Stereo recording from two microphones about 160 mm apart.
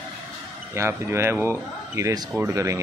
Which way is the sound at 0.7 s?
15° right (ahead or behind).